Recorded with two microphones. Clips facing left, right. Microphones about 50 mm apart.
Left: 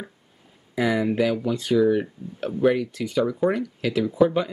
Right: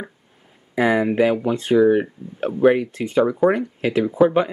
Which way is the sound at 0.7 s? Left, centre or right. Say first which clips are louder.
Right 4 dB; right.